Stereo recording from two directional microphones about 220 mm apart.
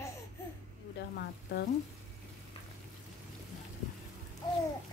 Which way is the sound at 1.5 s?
50° left (ahead or behind).